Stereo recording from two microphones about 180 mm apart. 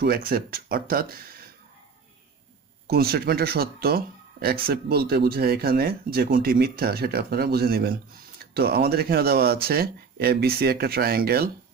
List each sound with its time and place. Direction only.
0.0 s speech: 55° right (ahead or behind)
2.9 s speech: 60° right (ahead or behind)